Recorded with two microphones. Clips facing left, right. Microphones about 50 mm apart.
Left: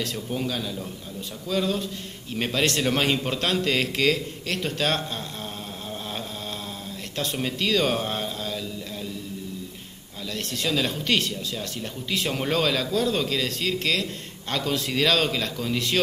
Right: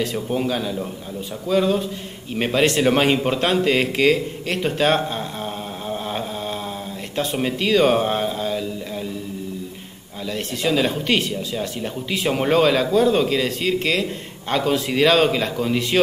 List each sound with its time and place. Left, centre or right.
0.0 s speech: centre
10.3 s speech: centre